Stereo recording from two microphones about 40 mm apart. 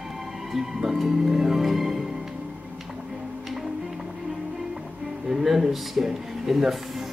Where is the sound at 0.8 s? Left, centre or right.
Centre.